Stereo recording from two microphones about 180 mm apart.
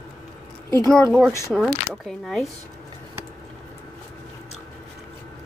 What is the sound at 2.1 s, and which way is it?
Speech, centre (ahead or behind).